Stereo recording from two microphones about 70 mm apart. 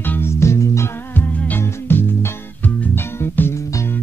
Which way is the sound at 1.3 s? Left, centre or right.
Left.